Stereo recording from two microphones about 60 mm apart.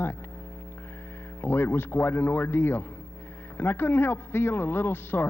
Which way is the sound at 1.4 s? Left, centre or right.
Left.